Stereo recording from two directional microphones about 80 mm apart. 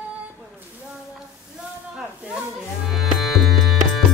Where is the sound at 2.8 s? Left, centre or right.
Centre.